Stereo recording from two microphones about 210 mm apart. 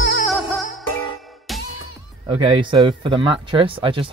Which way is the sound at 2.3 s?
25° right (ahead or behind).